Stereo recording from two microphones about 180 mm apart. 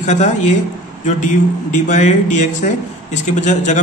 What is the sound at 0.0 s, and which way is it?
Speech, 40° left (ahead or behind).